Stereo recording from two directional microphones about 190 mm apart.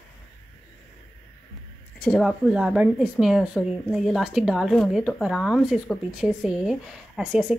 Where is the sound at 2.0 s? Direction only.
Centre (ahead or behind).